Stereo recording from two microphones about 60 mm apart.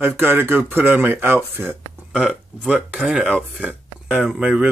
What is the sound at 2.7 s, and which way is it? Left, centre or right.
Speech, centre.